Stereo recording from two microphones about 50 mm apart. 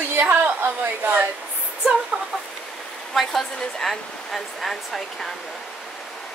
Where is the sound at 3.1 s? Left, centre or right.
Centre.